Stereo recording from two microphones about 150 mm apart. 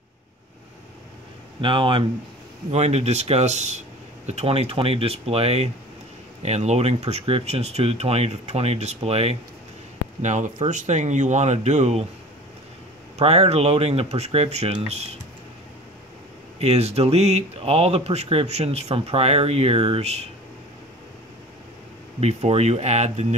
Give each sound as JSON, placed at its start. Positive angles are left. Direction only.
{"t": 1.6, "sound": "speech", "side_deg": -35}
{"t": 2.7, "sound": "speech", "side_deg": -45}
{"t": 13.2, "sound": "speech", "side_deg": -45}
{"t": 16.5, "sound": "speech", "side_deg": -45}
{"t": 22.2, "sound": "speech", "side_deg": -45}